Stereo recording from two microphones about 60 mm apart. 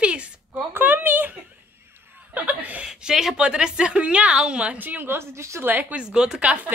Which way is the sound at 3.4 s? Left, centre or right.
Centre.